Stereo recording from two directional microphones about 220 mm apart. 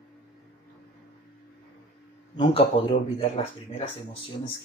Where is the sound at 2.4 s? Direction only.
25° left (ahead or behind).